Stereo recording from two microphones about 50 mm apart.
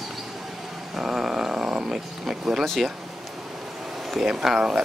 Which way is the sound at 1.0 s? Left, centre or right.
Centre.